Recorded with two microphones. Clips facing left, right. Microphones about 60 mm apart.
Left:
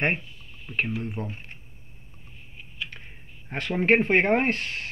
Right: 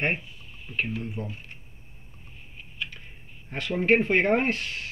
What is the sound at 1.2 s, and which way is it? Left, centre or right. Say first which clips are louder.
Speech: left 1 dB; left.